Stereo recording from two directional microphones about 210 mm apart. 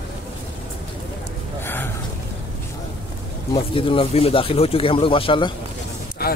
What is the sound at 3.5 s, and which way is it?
Speech, 25° left (ahead or behind).